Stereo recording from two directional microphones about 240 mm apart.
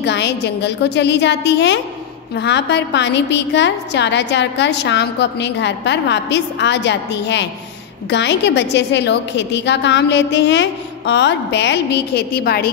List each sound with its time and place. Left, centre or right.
0.0 s a woman's voice: left